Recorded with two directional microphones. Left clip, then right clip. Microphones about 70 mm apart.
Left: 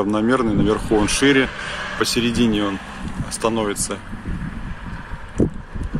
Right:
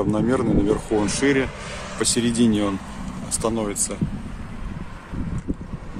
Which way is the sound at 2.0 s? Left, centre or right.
Centre.